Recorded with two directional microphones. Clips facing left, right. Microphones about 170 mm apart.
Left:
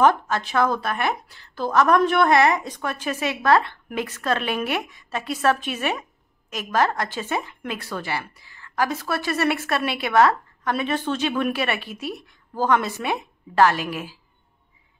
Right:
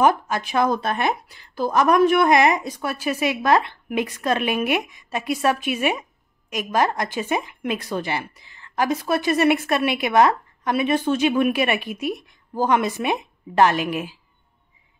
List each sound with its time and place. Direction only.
0.0 s a woman's voice: 10° right (ahead or behind)